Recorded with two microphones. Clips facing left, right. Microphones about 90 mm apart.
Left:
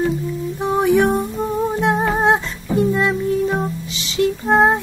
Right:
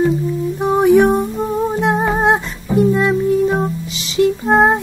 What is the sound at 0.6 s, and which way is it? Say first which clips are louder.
Music: right 4 dB; 15° right (ahead or behind).